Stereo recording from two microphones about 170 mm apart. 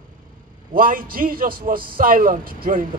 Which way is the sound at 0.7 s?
55° right (ahead or behind).